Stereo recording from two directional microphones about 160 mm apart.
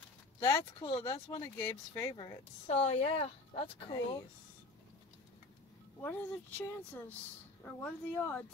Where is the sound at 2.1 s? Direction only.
35° left (ahead or behind).